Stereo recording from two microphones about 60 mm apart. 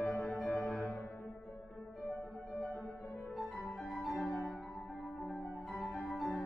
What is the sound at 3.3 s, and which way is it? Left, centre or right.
Music, centre.